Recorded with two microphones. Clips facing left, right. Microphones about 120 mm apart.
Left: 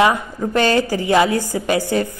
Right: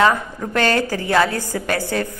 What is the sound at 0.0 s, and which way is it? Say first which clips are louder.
A woman's voice: left 1 dB; 15° left (ahead or behind).